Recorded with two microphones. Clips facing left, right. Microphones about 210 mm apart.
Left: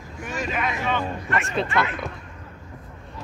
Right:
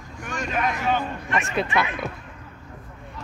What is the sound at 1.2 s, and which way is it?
Speech, 15° right (ahead or behind).